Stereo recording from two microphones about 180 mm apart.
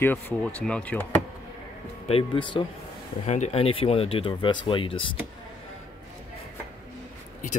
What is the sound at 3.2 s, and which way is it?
Speech, 40° left (ahead or behind).